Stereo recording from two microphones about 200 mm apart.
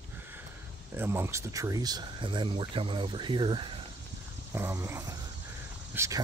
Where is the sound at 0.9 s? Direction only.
10° right (ahead or behind).